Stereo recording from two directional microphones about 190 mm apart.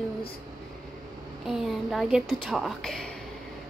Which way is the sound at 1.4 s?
Centre (ahead or behind).